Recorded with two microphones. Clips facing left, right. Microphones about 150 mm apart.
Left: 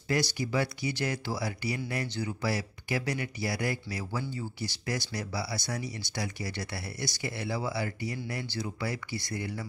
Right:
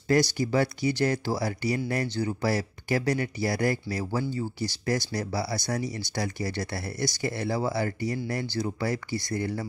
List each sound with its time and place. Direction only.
0.1 s speech: 40° right (ahead or behind)